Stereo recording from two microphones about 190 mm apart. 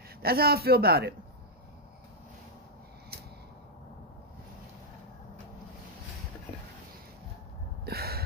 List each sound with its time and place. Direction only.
0.2 s a man's voice: 55° right (ahead or behind)
7.8 s gasp: 55° right (ahead or behind)